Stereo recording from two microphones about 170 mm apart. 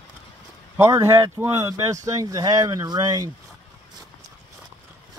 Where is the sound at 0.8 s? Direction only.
20° right (ahead or behind).